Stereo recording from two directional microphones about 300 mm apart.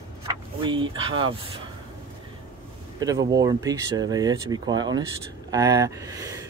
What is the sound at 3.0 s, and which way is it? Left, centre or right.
Speech, centre.